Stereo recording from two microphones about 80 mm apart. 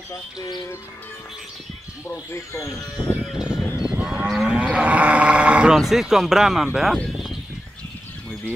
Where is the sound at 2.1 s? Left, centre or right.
Left.